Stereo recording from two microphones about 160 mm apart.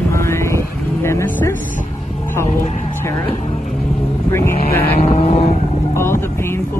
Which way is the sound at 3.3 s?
50° left (ahead or behind).